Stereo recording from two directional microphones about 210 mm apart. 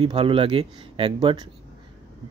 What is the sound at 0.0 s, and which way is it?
A man's voice, 25° right (ahead or behind).